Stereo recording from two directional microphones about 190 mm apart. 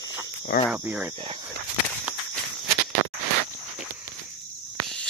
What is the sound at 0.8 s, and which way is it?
Cricket, 10° right (ahead or behind).